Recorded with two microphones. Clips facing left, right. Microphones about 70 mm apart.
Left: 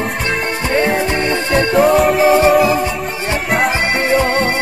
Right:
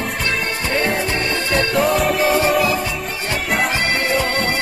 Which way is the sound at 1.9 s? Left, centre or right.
Centre.